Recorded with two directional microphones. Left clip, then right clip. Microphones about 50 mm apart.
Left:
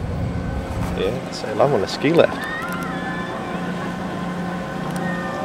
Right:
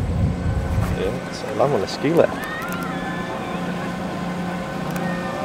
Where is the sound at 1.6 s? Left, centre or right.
Left.